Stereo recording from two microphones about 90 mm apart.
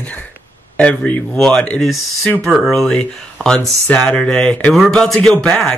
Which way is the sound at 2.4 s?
Centre (ahead or behind).